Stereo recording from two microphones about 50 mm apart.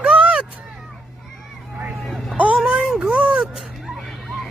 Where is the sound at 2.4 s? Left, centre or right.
Right.